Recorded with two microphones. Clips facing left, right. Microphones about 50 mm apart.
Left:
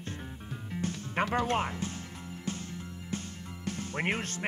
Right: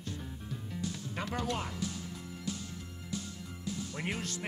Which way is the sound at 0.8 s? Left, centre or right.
Left.